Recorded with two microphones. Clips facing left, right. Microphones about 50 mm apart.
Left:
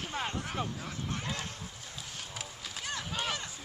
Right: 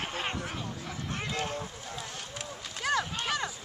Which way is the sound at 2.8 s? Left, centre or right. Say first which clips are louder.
Right 11 dB; right.